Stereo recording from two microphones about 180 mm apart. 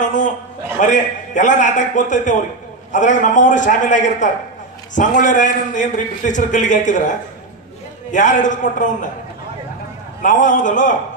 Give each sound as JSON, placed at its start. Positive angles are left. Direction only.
{"t": 0.0, "sound": "a sound", "side_deg": 45}
{"t": 0.7, "sound": "a man's voice", "side_deg": 45}
{"t": 10.2, "sound": "a man's voice", "side_deg": 45}